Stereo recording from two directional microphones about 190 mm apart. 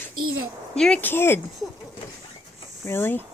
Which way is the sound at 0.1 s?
90° right.